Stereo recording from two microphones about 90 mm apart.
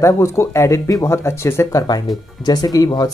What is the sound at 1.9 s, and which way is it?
Speech, 50° left (ahead or behind).